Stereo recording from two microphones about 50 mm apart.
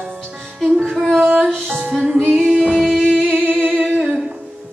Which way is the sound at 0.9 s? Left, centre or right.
Centre.